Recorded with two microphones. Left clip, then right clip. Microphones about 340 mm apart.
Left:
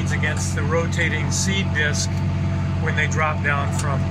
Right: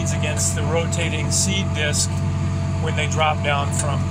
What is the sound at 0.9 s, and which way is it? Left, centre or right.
Speech, centre.